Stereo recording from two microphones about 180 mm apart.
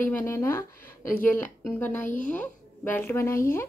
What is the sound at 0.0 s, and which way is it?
Speech, 10° left (ahead or behind).